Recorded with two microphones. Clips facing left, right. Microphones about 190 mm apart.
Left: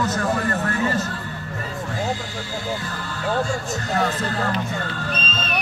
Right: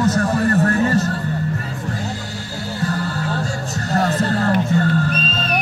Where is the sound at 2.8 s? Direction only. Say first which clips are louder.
Right 7 dB; 40° right (ahead or behind).